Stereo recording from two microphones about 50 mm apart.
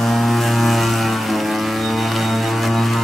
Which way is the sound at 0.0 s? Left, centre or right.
Centre.